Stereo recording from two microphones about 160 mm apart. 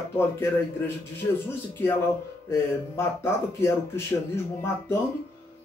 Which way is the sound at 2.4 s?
15° left (ahead or behind).